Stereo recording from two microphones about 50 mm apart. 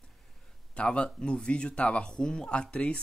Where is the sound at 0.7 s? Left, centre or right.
Left.